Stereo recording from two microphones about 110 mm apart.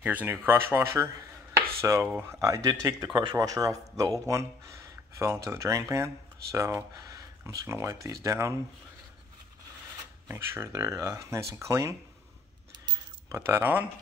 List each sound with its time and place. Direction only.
0.0 s speech: 15° right (ahead or behind)
2.0 s speech: 15° right (ahead or behind)
2.4 s speech: 30° right (ahead or behind)
10.2 s speech: 20° right (ahead or behind)
13.3 s speech: 20° right (ahead or behind)